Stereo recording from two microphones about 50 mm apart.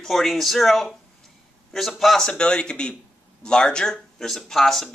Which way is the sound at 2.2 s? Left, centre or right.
Centre.